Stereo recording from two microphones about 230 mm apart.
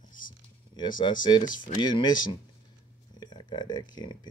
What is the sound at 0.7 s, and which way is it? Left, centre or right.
Speech, centre.